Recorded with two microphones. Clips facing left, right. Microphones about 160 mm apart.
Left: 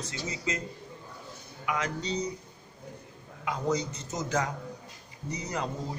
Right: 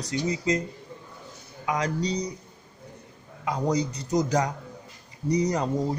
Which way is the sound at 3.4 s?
35° right (ahead or behind).